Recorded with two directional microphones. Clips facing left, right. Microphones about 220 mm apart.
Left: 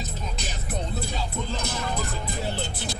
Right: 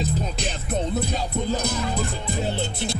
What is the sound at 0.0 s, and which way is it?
Music, 30° right (ahead or behind).